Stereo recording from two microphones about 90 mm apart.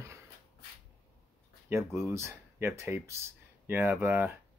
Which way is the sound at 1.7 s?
30° right (ahead or behind).